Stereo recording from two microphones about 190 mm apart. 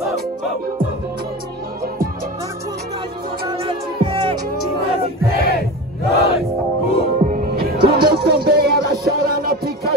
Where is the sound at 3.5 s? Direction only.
25° right (ahead or behind).